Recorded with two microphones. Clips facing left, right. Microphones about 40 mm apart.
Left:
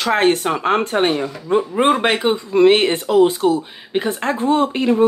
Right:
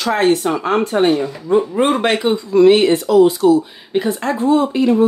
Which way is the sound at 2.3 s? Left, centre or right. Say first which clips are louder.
Right 3 dB; left.